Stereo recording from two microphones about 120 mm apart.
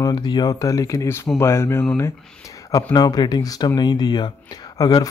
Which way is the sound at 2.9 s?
35° left (ahead or behind).